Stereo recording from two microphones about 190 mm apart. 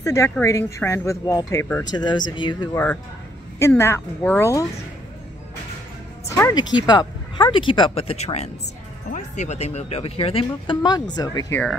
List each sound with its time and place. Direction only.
0.0 s speech: 15° left (ahead or behind)
1.9 s speech: 25° left (ahead or behind)
6.5 s speech: 20° left (ahead or behind)